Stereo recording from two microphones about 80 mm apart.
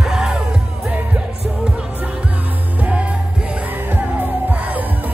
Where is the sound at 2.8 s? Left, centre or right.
Centre.